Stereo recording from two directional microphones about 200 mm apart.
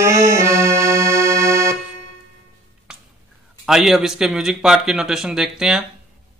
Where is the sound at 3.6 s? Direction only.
Centre (ahead or behind).